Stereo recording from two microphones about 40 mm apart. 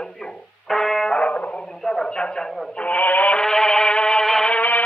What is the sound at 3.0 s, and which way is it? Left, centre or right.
Music, left.